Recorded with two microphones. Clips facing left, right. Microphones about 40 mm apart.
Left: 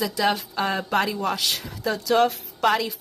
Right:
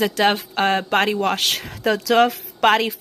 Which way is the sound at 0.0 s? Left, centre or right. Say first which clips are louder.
Right 5 dB; right.